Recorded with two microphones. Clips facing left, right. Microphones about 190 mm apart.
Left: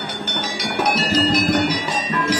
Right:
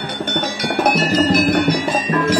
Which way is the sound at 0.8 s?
55° right (ahead or behind).